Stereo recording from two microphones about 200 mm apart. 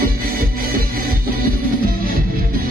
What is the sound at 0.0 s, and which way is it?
Music, 50° right (ahead or behind).